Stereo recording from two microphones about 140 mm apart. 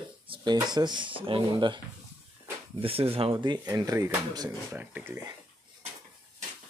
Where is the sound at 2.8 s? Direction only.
40° right (ahead or behind).